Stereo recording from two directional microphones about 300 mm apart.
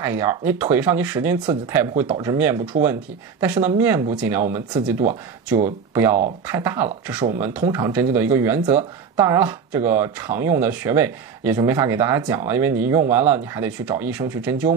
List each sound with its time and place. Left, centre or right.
0.0 s speech: centre
5.0 s speech: right
6.4 s speech: centre
7.2 s speech: right